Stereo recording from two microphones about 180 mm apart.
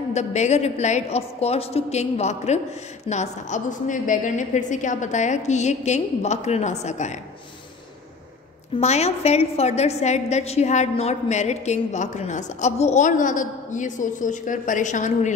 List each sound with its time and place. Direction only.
0.1 s a woman's voice: 40° left (ahead or behind)
8.7 s a woman's voice: 35° left (ahead or behind)